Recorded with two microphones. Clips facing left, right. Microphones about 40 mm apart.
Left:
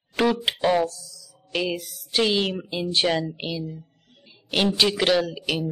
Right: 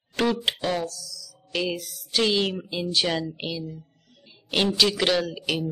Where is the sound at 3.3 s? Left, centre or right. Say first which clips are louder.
Left 1 dB; centre.